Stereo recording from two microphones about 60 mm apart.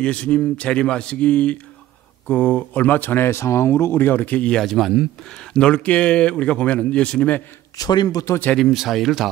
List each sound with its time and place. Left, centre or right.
0.0 s a man's voice: centre
4.5 s speech: centre
5.5 s speech: centre
7.7 s a man's voice: left
8.5 s speech: centre